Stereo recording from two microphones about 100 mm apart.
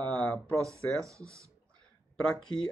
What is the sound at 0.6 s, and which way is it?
Speech, 30° right (ahead or behind).